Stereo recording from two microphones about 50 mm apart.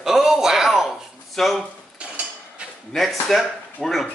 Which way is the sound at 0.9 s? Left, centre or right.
Centre.